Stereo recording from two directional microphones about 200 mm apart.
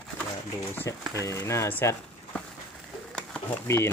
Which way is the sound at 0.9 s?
15° left (ahead or behind).